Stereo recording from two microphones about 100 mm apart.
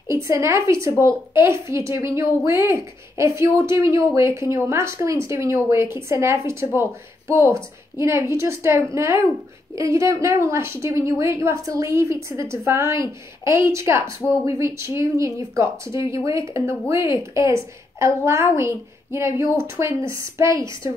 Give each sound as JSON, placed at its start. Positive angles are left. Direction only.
{"t": 0.1, "sound": "a woman's voice", "side_deg": -25}